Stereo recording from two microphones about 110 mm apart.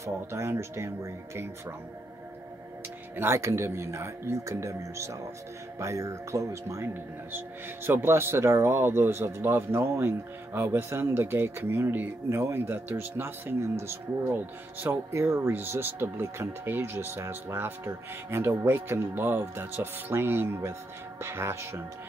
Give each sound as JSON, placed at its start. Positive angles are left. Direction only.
{"t": 0.0, "sound": "a man's voice", "side_deg": -25}
{"t": 3.2, "sound": "a man's voice", "side_deg": -25}